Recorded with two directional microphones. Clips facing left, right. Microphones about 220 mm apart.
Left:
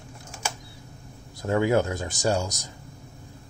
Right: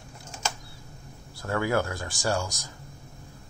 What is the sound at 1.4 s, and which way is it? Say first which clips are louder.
Speech: left 4 dB; 20° left (ahead or behind).